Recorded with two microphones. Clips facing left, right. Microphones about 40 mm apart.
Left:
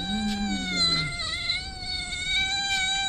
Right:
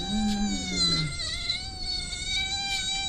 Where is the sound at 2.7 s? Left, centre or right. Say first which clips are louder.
Left 5 dB; left.